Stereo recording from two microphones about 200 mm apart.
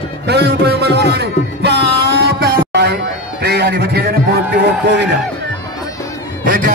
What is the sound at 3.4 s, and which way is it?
Speech, 55° right (ahead or behind).